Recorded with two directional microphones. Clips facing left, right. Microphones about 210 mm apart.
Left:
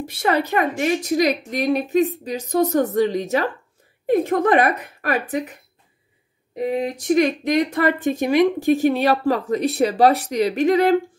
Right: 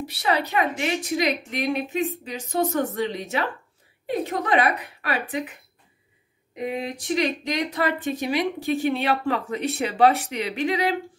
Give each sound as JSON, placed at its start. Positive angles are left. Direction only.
{"t": 0.0, "sound": "a woman's voice", "side_deg": 50}
{"t": 6.5, "sound": "a woman's voice", "side_deg": 40}